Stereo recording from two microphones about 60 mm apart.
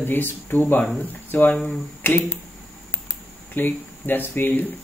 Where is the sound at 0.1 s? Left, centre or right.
Left.